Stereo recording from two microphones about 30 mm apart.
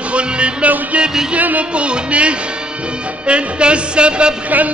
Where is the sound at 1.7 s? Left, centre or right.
Right.